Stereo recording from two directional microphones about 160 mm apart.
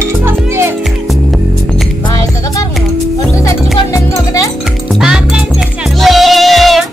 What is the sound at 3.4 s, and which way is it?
Music, 20° left (ahead or behind).